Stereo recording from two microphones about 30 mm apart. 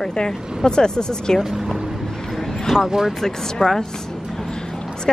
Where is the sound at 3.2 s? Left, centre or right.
Centre.